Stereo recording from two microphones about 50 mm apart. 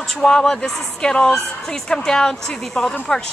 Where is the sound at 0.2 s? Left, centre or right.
Centre.